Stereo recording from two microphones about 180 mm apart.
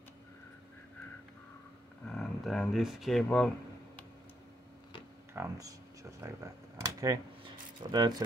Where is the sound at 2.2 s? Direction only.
Centre (ahead or behind).